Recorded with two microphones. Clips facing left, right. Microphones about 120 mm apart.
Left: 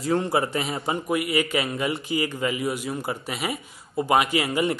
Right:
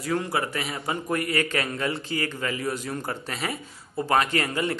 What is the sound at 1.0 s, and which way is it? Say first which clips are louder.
A man's voice: left 1 dB; 10° left (ahead or behind).